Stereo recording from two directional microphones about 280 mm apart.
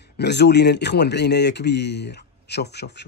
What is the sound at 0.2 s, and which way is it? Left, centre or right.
Speech, left.